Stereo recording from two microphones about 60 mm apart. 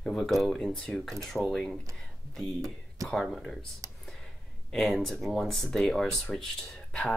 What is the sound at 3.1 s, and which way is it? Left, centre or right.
Speech, centre.